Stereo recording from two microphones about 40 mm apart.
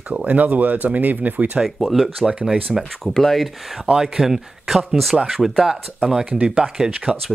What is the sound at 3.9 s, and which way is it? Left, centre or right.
Speech, centre.